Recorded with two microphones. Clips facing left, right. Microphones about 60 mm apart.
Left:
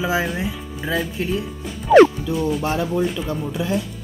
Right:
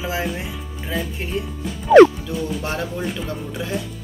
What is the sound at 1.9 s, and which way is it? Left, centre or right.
Speech, centre.